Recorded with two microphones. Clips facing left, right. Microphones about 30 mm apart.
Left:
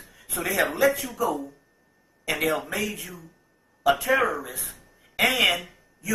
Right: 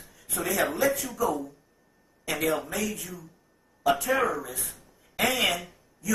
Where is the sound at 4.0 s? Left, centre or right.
Centre.